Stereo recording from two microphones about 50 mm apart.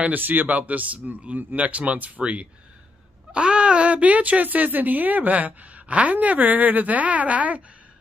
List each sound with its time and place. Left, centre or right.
0.0 s speech: right